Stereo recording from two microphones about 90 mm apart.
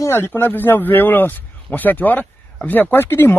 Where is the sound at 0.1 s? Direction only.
25° left (ahead or behind).